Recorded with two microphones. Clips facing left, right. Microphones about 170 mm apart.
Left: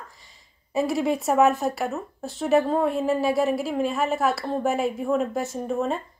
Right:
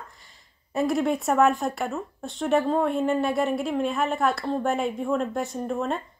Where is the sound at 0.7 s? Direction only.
Centre (ahead or behind).